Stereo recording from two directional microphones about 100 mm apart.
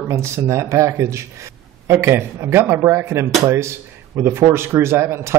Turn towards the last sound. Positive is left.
turn(degrees=-25)  # may be behind; listen again after turning